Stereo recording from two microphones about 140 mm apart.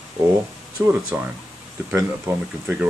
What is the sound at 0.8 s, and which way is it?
Speech, 10° right (ahead or behind).